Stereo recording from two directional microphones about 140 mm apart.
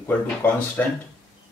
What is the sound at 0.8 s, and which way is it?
Speech, 10° left (ahead or behind).